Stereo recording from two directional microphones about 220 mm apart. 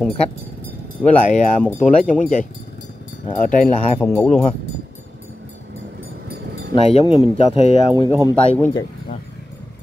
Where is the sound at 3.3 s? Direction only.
35° left (ahead or behind).